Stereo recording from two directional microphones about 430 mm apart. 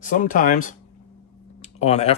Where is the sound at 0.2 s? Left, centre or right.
Centre.